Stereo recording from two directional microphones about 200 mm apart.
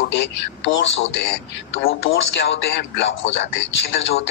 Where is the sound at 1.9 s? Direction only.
75° left (ahead or behind).